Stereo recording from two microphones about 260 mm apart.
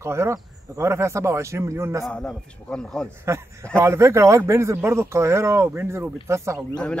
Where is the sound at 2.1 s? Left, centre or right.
Centre.